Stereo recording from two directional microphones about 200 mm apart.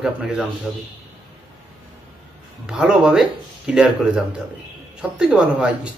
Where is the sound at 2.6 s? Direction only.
5° right (ahead or behind).